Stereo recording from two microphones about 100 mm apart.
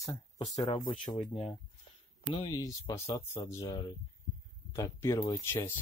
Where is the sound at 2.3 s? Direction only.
50° left (ahead or behind).